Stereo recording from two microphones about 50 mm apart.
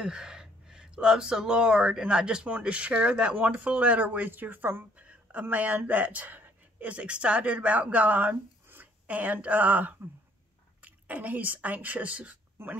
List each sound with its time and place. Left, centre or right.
0.0 s speech: centre; by 4.8 s right
4.9 s speech: right